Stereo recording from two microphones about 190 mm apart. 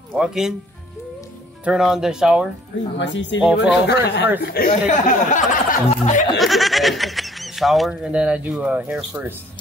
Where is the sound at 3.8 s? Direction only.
60° left (ahead or behind).